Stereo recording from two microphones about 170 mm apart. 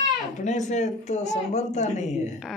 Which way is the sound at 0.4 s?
45° left (ahead or behind).